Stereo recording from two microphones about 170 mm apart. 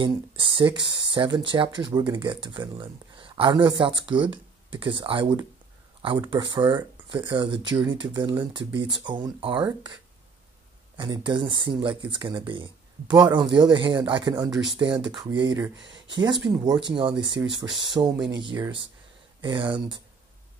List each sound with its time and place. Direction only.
0.0 s speech: 30° right (ahead or behind)
11.0 s speech: 25° right (ahead or behind)